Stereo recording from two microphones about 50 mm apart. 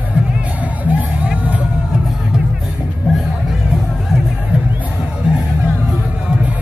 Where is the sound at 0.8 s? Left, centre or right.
Right.